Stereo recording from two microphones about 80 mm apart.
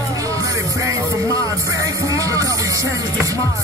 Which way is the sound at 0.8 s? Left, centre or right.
Right.